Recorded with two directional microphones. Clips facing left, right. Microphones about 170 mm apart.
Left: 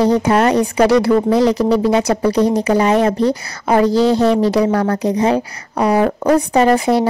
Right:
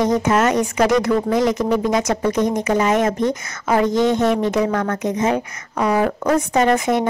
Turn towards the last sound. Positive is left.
turn(degrees=35)  # may be behind; listen again after turning